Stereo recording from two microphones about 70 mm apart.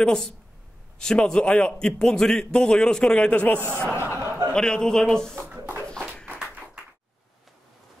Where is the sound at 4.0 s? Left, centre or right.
Right.